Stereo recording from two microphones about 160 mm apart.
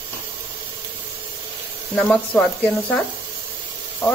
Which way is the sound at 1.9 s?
10° left (ahead or behind).